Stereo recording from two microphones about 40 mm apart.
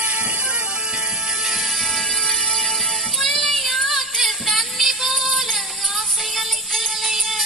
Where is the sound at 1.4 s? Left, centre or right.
Centre.